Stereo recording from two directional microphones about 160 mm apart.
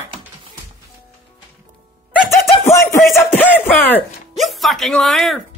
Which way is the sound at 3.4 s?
10° left (ahead or behind).